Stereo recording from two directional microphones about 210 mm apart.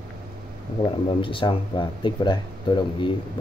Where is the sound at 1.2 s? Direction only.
25° left (ahead or behind).